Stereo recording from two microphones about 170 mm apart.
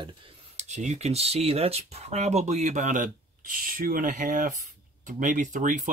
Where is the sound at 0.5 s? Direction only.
40° right (ahead or behind).